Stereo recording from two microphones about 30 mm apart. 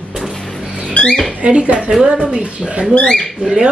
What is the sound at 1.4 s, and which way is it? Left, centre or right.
A woman's voice, right.